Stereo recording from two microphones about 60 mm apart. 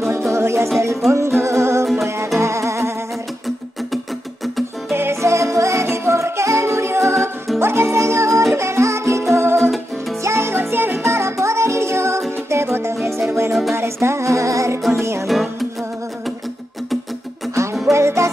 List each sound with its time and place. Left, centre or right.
0.0 s music: right
4.9 s music: right
5.3 s music: right
13.5 s music: centre
13.7 s music: right
17.6 s music: right